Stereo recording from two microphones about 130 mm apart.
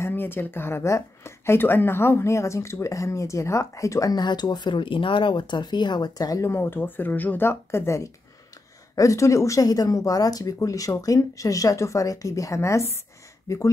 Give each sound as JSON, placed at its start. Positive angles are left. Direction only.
{"t": 0.0, "sound": "speech", "side_deg": 15}